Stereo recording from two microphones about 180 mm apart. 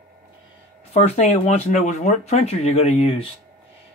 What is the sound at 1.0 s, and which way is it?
Speech, 35° left (ahead or behind).